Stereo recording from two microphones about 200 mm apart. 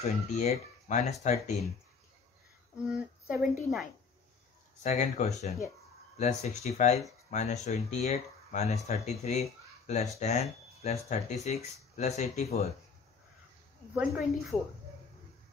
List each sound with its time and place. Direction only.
0.0 s speech: 35° left (ahead or behind)
2.8 s speech: 5° right (ahead or behind)
4.8 s speech: 35° left (ahead or behind)
14.5 s speech: 5° left (ahead or behind)